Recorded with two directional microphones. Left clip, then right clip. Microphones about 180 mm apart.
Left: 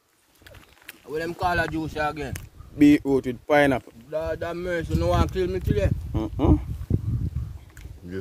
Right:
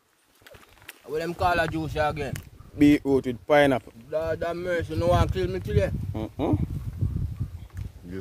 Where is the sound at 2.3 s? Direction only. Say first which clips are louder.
Right 1 dB; centre (ahead or behind).